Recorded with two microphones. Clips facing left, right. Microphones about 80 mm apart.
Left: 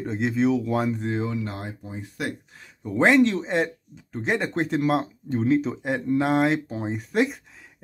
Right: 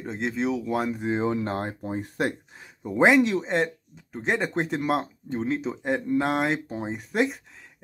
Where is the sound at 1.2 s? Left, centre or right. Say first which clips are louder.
Right 4 dB; right.